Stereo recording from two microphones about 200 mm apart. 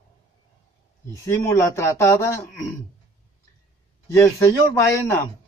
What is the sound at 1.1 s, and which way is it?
A man's voice, 15° left (ahead or behind).